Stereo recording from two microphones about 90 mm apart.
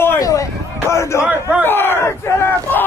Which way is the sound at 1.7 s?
25° left (ahead or behind).